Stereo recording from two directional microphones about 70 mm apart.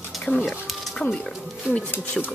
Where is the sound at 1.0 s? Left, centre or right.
Left.